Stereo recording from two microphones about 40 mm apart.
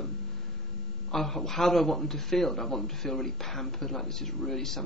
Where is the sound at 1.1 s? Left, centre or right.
Centre.